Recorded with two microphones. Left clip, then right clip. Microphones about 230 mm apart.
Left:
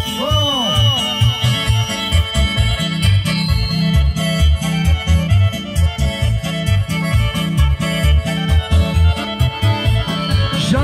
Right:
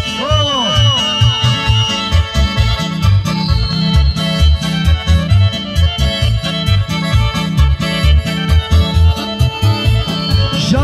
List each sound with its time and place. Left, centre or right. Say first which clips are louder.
0.2 s music: right 2 dB; right
3.9 s music: right 3 dB; right
7.0 s music: right 1 dB; right
10.2 s music: right 4 dB; right